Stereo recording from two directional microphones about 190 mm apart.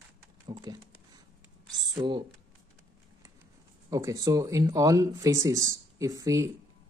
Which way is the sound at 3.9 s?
15° right (ahead or behind).